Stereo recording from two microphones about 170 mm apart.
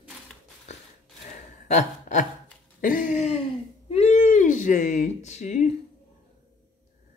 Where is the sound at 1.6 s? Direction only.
45° left (ahead or behind).